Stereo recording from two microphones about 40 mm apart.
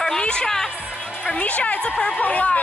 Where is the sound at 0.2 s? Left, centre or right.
Left.